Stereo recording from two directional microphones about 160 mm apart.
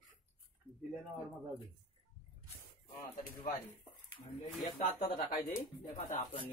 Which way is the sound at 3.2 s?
65° left (ahead or behind).